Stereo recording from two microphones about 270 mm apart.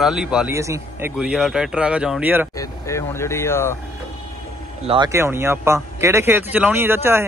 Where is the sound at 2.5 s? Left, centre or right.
Centre.